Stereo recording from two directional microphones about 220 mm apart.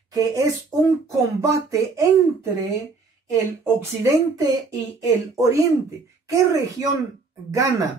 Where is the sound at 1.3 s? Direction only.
15° right (ahead or behind).